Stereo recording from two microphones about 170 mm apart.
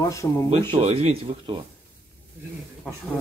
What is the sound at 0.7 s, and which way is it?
Speech, 35° right (ahead or behind).